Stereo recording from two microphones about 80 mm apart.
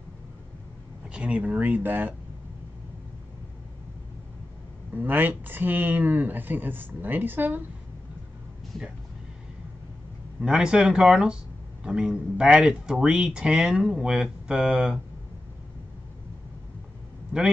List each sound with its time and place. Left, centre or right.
1.0 s speech: centre
4.9 s speech: right
10.4 s speech: centre